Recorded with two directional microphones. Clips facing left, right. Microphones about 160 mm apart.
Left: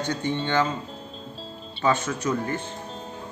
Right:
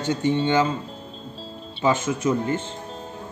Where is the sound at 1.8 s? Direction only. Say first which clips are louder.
Right 3 dB; 20° right (ahead or behind).